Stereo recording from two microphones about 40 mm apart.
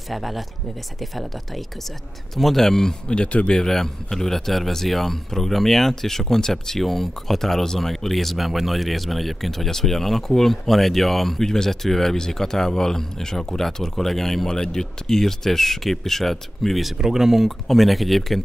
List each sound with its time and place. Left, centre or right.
0.1 s speech: centre
2.3 s speech: centre
3.1 s speech: left
3.5 s speech: centre
17.0 s speech: centre